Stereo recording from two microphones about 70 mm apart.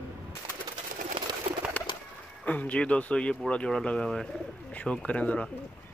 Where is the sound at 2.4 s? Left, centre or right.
Left.